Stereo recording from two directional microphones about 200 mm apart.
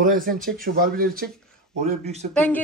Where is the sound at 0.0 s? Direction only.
45° right (ahead or behind).